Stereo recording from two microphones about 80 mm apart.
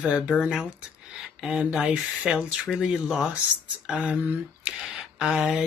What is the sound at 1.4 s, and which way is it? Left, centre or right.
Speech, centre.